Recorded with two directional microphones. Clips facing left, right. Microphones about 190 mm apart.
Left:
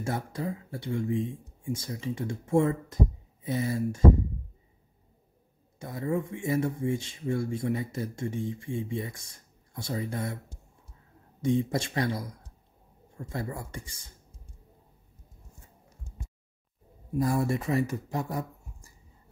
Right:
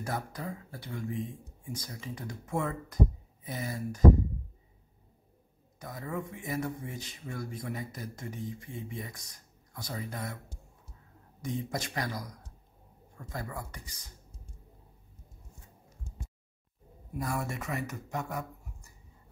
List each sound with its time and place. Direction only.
0.0 s speech: 25° left (ahead or behind)
5.8 s speech: 25° left (ahead or behind)
11.4 s speech: 25° left (ahead or behind)
13.3 s speech: 25° left (ahead or behind)
17.1 s speech: 35° left (ahead or behind)